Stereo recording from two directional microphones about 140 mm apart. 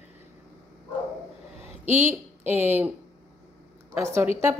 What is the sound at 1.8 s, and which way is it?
Speech, 55° right (ahead or behind).